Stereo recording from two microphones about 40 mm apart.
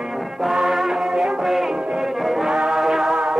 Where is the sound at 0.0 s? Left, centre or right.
Centre.